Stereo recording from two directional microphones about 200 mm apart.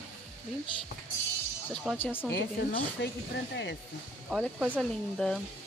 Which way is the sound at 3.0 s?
60° left (ahead or behind).